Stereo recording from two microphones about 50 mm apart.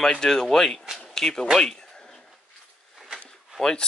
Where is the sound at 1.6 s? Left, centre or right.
Centre.